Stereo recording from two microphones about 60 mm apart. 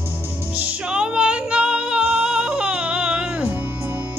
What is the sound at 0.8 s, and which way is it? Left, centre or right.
Music, centre.